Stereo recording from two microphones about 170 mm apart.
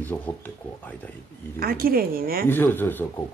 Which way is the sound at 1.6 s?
60° right (ahead or behind).